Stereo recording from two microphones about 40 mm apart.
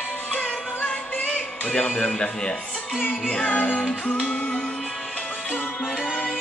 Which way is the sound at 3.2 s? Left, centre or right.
Left.